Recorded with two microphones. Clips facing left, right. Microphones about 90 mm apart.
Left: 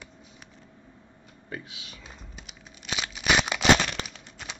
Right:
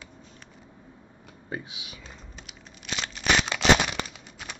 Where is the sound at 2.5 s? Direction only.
5° left (ahead or behind).